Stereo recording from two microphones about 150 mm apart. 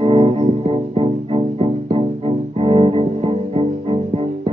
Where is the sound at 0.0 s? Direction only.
35° right (ahead or behind).